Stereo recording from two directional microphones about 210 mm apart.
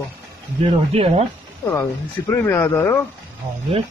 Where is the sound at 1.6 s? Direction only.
15° left (ahead or behind).